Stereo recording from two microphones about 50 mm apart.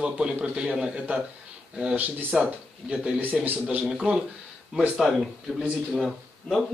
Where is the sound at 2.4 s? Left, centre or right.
Right.